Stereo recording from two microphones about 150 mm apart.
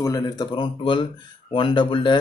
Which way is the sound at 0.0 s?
25° left (ahead or behind).